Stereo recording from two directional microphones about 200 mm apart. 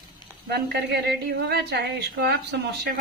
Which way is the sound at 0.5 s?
55° right (ahead or behind).